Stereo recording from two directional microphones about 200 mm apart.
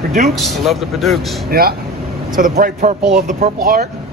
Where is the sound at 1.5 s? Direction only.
50° right (ahead or behind).